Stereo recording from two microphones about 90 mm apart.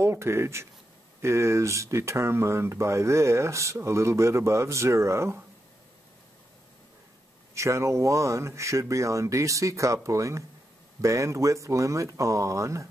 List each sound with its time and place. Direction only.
0.0 s speech: 30° right (ahead or behind)
7.5 s speech: 35° right (ahead or behind)